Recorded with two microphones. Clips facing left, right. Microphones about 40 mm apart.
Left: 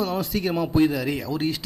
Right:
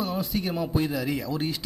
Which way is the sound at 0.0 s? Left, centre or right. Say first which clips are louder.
Left 3 dB; left.